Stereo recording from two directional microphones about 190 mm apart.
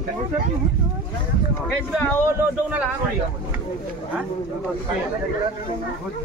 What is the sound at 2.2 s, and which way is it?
Speech, 10° right (ahead or behind).